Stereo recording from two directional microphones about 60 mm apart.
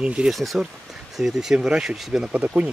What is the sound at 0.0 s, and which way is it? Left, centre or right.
Speech, centre.